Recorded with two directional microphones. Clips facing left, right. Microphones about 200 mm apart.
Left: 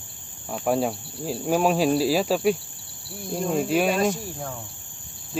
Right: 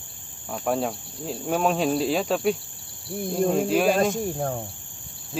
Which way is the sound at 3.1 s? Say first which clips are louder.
Right 3 dB; 50° right (ahead or behind).